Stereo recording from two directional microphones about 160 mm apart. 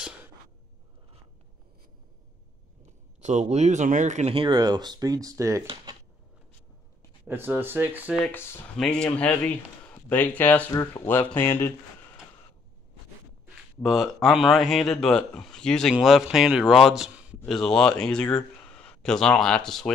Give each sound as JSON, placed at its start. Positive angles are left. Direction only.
{"t": 3.2, "sound": "speech", "side_deg": -45}
{"t": 4.4, "sound": "speech", "side_deg": -25}
{"t": 7.2, "sound": "speech", "side_deg": -10}
{"t": 8.3, "sound": "speech", "side_deg": 15}
{"t": 13.8, "sound": "speech", "side_deg": 0}